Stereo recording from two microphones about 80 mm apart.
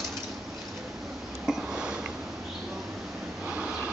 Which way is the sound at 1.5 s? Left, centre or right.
Centre.